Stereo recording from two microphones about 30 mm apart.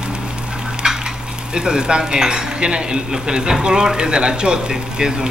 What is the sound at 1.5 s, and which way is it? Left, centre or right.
Speech, right.